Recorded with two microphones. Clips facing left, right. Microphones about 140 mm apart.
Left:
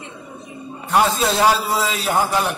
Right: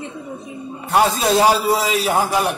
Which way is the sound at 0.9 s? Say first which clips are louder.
Right 1 dB; 10° right (ahead or behind).